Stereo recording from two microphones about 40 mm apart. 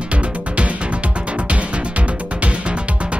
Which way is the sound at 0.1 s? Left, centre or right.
Right.